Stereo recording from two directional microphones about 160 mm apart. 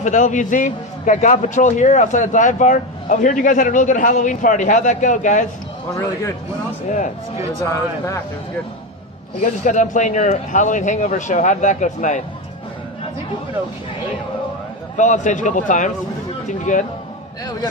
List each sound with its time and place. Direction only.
0.0 s a man's voice: 50° left (ahead or behind)
9.4 s a man's voice: 50° left (ahead or behind)
15.0 s a man's voice: 50° left (ahead or behind)